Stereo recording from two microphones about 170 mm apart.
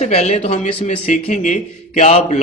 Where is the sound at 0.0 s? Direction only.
40° left (ahead or behind).